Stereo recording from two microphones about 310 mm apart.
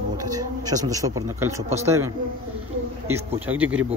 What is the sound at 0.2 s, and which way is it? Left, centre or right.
A man's voice, centre.